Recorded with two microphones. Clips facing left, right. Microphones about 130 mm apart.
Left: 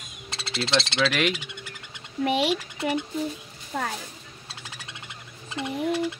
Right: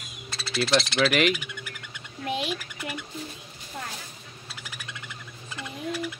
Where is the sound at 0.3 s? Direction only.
25° left (ahead or behind).